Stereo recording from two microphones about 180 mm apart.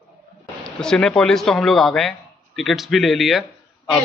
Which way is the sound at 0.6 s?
5° left (ahead or behind).